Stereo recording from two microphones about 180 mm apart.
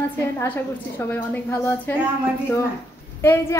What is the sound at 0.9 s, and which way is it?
A woman's voice, 10° left (ahead or behind).